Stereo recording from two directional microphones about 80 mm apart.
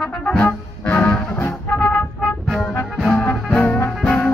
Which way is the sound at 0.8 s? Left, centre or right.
Centre.